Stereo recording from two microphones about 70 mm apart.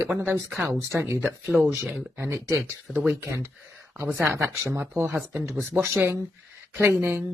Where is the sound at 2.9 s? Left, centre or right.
Right.